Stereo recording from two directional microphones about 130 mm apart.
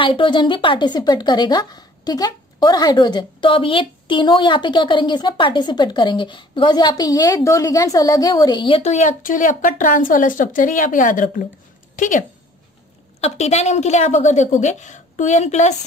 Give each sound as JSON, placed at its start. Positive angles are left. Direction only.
{"t": 0.0, "sound": "a woman's voice", "side_deg": 40}
{"t": 8.8, "sound": "a woman's voice", "side_deg": 70}
{"t": 13.2, "sound": "a woman's voice", "side_deg": 55}